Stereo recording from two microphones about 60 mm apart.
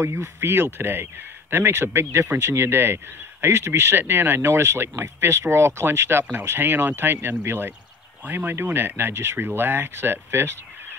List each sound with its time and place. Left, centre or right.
0.0 s speech: right